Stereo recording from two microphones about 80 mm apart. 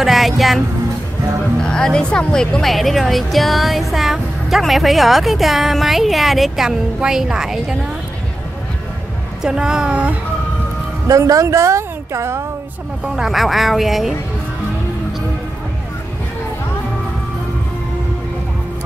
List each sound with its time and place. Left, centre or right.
0.0 s music: centre
1.6 s speech: centre
9.4 s a woman's voice: centre
11.1 s a woman's voice: right
13.0 s speech: centre